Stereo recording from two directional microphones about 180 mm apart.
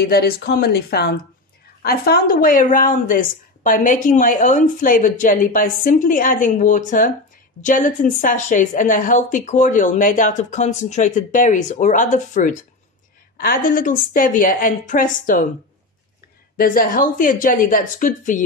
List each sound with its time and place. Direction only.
0.1 s speech: 60° left (ahead or behind)
16.5 s speech: 50° left (ahead or behind)